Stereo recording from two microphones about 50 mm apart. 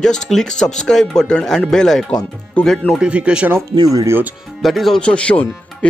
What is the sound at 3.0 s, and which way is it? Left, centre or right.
Speech, right.